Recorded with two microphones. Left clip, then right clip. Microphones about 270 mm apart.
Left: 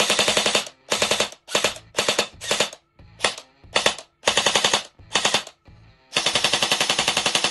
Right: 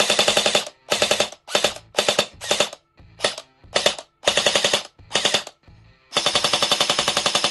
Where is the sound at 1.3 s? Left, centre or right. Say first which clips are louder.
Right 2 dB; centre.